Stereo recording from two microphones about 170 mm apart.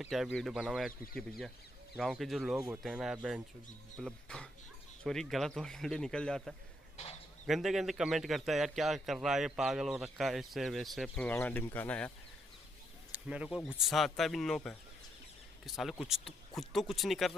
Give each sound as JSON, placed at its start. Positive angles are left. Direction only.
{"t": 0.0, "sound": "speech", "side_deg": 0}
{"t": 1.0, "sound": "speech", "side_deg": 60}
{"t": 2.0, "sound": "speech", "side_deg": 0}
{"t": 11.2, "sound": "speech", "side_deg": 10}
{"t": 13.1, "sound": "speech", "side_deg": -5}